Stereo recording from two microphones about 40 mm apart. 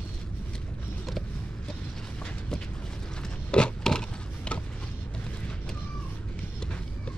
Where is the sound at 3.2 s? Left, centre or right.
Left.